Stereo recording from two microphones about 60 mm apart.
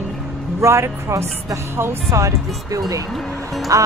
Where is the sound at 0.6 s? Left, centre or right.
Right.